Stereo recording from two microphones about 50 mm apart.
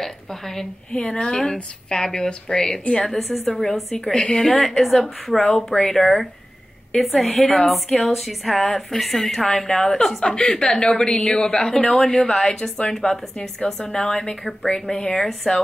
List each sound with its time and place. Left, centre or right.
0.0 s a sound: centre
0.9 s a woman's voice: centre
3.9 s a woman's voice: centre
4.4 s a woman's voice: centre
5.4 s a woman's voice: centre